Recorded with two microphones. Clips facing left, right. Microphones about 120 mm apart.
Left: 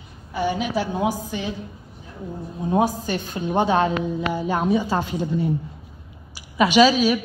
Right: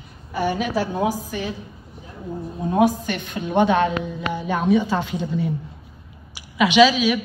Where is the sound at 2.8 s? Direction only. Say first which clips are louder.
Right 6 dB; 30° left (ahead or behind).